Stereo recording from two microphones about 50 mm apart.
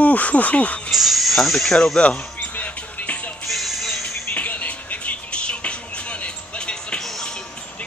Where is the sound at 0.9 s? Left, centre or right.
Centre.